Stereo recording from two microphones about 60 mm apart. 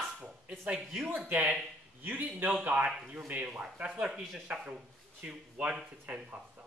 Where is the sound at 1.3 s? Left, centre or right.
Right.